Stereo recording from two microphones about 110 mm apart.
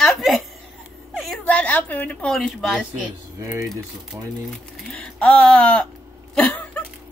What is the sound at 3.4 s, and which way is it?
Speech, 25° right (ahead or behind).